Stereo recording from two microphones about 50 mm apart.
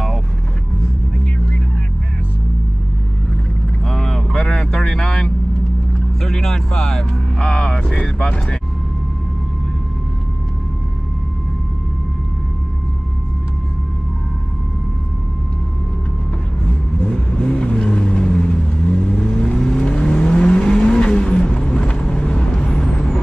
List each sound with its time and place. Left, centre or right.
3.8 s vehicle: centre
17.0 s vehicle: centre